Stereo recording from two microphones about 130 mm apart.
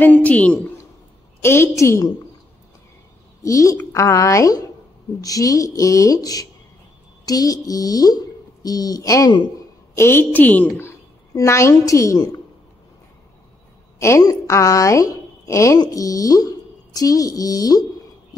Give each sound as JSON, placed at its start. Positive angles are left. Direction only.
{"t": 0.0, "sound": "a woman's voice", "side_deg": 10}
{"t": 3.4, "sound": "a woman's voice", "side_deg": 25}
{"t": 9.9, "sound": "a woman's voice", "side_deg": 20}
{"t": 13.9, "sound": "a woman's voice", "side_deg": 20}